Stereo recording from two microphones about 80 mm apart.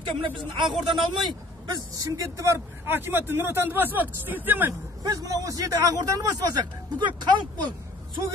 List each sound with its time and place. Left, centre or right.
0.0 s speech: right
0.7 s speech: centre
1.7 s speech: right
5.0 s a man's voice: right
7.0 s speech: right